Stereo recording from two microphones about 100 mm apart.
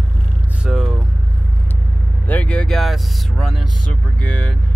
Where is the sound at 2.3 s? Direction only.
15° left (ahead or behind).